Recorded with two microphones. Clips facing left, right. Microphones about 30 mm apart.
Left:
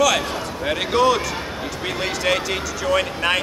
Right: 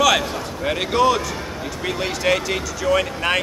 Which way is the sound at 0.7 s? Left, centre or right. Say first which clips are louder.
Even; centre.